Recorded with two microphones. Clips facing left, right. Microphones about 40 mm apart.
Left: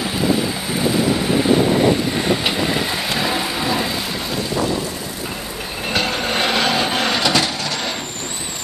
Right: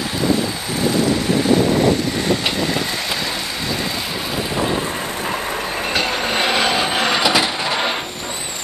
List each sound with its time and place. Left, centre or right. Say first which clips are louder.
3.2 s vehicle: left 3 dB; centre
5.9 s vehicle: left 1 dB; centre
7.6 s vehicle: right 4 dB; right